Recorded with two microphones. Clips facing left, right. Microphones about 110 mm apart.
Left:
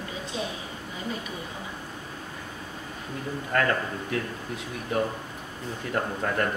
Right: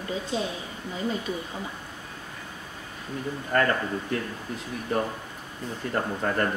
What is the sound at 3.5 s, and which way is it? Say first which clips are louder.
Speech: right 2 dB; centre (ahead or behind).